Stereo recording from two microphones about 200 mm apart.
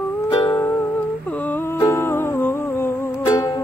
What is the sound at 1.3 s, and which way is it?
Humming, 10° left (ahead or behind).